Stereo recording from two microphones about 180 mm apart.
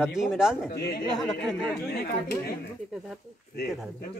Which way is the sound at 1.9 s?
60° left (ahead or behind).